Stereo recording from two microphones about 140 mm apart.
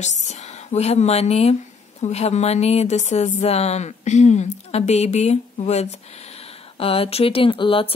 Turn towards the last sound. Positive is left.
turn(degrees=40)  # may be behind; listen again after turning